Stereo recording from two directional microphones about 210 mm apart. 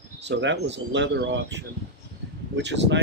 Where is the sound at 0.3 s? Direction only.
60° right (ahead or behind).